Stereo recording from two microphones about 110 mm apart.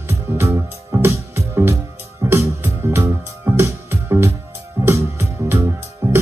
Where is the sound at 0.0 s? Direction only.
20° right (ahead or behind).